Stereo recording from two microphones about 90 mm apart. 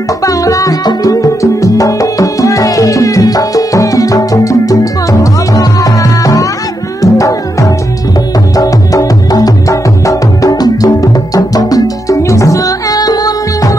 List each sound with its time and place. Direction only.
0.2 s music: 40° left (ahead or behind)